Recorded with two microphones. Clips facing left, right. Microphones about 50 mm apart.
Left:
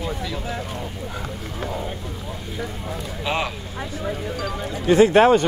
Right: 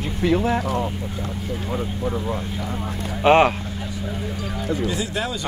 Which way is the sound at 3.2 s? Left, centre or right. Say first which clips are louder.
Right 11 dB; right.